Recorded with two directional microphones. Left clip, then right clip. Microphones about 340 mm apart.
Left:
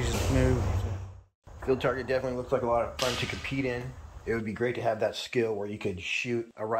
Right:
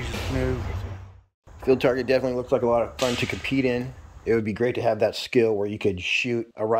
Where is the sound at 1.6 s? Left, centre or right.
Right.